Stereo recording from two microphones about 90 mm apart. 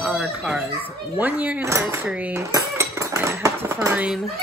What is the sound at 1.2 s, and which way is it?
Speech, 20° right (ahead or behind).